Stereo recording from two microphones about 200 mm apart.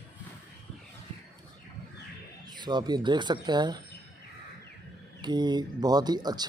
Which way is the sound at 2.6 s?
20° right (ahead or behind).